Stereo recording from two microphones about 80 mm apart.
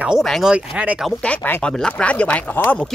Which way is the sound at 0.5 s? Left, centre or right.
Centre.